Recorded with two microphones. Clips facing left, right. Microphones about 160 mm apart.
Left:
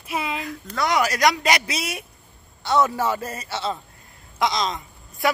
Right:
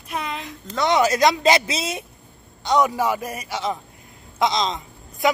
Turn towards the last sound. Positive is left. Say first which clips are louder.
# right 2 dB
turn(degrees=-20)  # may be behind; listen again after turning